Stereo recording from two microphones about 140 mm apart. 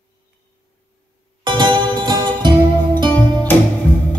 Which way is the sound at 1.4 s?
35° right (ahead or behind).